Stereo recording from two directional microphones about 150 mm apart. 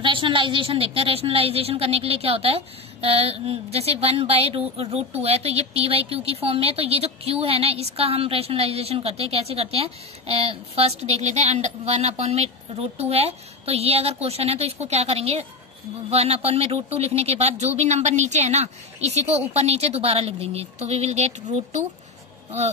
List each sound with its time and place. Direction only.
0.0 s speech: 35° right (ahead or behind)